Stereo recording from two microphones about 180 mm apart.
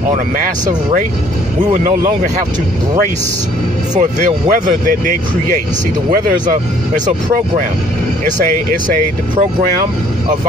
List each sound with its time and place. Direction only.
4.0 s speech: 45° right (ahead or behind)
6.1 s speech: 50° right (ahead or behind)